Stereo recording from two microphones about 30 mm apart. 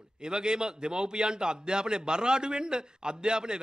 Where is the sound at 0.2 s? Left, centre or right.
Right.